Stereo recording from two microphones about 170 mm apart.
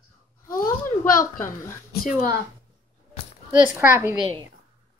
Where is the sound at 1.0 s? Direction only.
55° left (ahead or behind).